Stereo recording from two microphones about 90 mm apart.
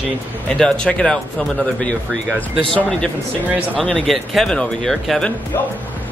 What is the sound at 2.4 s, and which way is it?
A man's voice, 15° left (ahead or behind).